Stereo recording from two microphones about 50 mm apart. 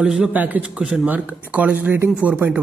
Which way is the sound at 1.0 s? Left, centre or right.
Right.